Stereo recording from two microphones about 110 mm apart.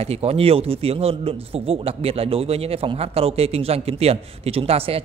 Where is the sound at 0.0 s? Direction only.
65° right (ahead or behind).